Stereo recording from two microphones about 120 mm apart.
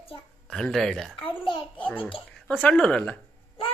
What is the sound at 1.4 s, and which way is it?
Speech, 45° left (ahead or behind).